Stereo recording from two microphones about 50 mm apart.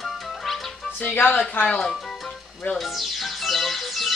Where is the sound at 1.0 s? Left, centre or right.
Left.